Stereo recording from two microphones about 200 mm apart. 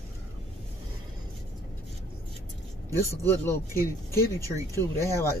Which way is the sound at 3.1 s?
15° left (ahead or behind).